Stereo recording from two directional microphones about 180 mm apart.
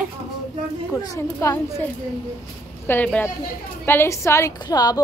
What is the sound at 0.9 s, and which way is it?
Speech, 15° left (ahead or behind).